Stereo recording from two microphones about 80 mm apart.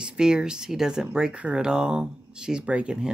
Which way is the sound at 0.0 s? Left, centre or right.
Centre.